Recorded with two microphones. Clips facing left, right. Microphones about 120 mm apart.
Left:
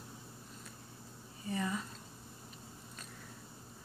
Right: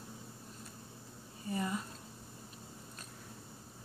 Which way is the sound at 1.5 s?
35° right (ahead or behind).